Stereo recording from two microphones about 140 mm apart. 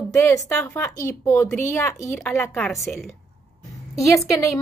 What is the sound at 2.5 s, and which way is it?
Speech, centre (ahead or behind).